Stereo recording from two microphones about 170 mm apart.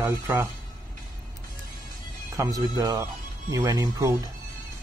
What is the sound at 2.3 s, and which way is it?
Speech, 20° right (ahead or behind).